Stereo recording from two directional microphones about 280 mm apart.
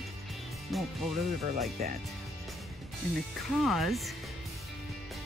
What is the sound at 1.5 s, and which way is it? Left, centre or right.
Speech, right.